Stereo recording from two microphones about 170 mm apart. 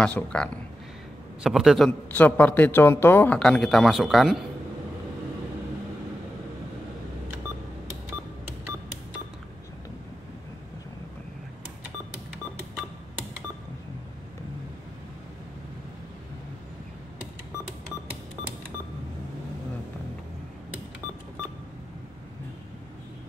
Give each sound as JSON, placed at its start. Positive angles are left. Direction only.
{"t": 0.0, "sound": "a man's voice", "side_deg": 5}
{"t": 2.1, "sound": "a man's voice", "side_deg": 10}